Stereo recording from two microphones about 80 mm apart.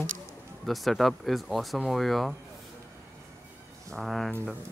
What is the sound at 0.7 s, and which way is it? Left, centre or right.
A man's voice, centre.